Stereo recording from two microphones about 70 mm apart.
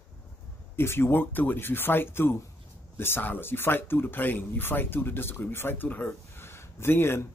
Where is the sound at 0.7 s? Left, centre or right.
Left.